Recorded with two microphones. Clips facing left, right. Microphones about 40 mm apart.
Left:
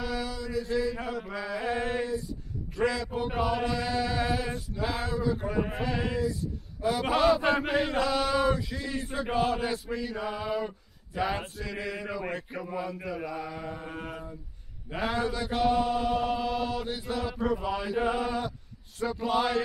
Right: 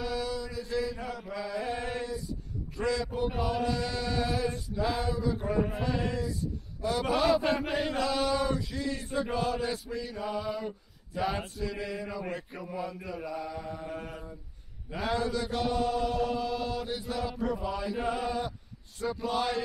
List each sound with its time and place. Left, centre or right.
0.0 s mantra: centre
1.0 s mantra: left
2.7 s a man's voice: left
3.1 s mantra: left
5.3 s mantra: centre
5.6 s mantra: left
7.4 s chant: left
7.7 s mantra: centre
9.3 s chant: left
11.5 s mantra: centre
15.5 s chant: left
16.8 s mantra: centre
19.2 s mantra: left